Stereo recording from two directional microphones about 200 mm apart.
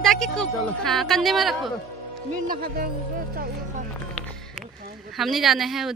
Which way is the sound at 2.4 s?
45° right (ahead or behind).